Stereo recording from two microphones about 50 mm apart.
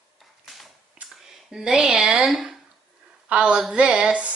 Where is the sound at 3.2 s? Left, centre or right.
Right.